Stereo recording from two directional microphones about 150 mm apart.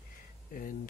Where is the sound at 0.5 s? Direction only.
65° left (ahead or behind).